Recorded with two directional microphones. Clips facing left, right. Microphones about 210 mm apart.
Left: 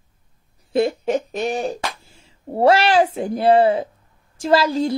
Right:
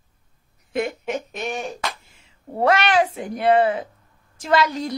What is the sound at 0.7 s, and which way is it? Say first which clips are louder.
A woman's voice: left 6 dB; 30° left (ahead or behind).